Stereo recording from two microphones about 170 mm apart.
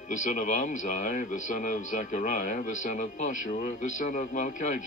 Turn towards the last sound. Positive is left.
turn(degrees=45)  # may be behind; listen again after turning